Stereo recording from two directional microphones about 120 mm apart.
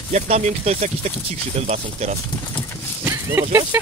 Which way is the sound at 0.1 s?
70° right (ahead or behind).